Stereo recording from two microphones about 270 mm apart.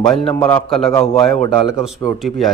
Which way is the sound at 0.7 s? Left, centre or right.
Centre.